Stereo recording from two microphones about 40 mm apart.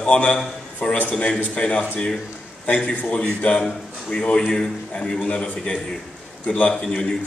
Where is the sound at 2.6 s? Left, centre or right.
Left.